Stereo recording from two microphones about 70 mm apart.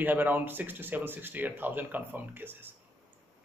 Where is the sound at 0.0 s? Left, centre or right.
Right.